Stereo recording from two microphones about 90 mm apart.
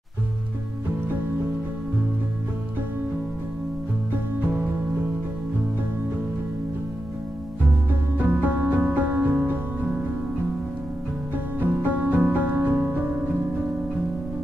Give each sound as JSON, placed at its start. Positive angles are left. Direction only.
{"t": 8.2, "sound": "music", "side_deg": -20}
{"t": 11.6, "sound": "music", "side_deg": -20}